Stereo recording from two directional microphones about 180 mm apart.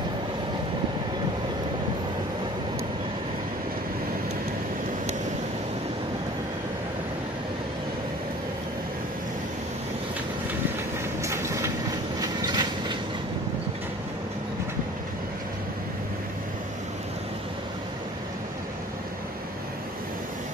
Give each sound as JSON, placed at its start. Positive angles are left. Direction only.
{"t": 11.2, "sound": "train", "side_deg": -15}